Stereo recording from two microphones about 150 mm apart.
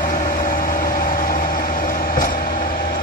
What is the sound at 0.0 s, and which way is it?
Vehicle, 60° left (ahead or behind).